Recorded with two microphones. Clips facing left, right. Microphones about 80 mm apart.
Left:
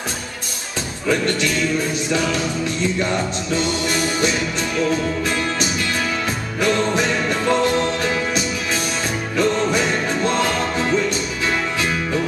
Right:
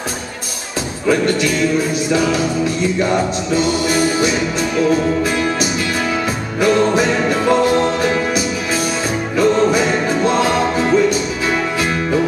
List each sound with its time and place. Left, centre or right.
1.0 s music: centre